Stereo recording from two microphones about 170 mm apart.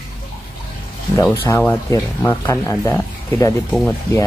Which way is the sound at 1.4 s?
15° left (ahead or behind).